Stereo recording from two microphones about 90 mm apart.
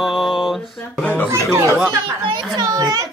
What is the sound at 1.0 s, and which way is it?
Speech, 15° left (ahead or behind).